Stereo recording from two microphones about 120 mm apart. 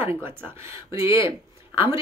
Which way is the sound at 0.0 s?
20° right (ahead or behind).